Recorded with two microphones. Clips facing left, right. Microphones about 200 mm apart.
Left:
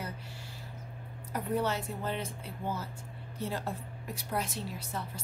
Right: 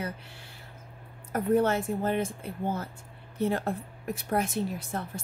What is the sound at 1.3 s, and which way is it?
A woman's voice, 50° right (ahead or behind).